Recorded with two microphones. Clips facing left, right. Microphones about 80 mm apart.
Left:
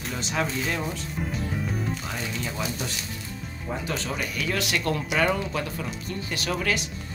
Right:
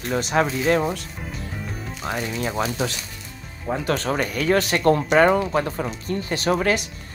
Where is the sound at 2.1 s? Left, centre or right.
Right.